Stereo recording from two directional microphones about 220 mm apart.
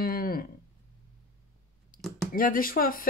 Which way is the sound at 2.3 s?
40° left (ahead or behind).